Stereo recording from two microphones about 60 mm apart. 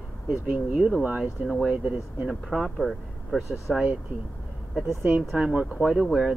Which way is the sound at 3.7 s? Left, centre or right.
Centre.